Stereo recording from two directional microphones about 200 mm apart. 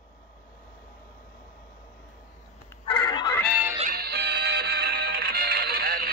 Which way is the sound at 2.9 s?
20° left (ahead or behind).